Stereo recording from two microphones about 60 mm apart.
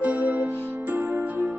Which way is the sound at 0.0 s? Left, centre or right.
Right.